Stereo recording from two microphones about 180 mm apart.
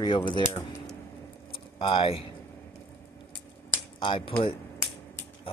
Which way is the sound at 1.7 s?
30° left (ahead or behind).